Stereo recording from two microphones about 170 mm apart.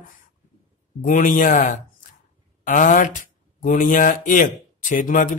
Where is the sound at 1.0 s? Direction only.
50° left (ahead or behind).